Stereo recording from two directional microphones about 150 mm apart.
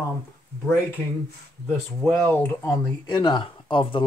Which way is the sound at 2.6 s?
25° left (ahead or behind).